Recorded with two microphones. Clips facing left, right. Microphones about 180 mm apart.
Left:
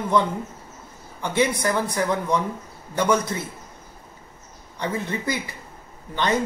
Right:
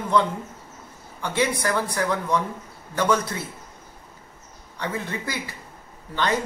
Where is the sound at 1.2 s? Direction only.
15° left (ahead or behind).